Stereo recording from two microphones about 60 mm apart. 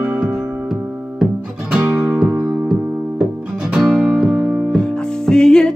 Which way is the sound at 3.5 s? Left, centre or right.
Centre.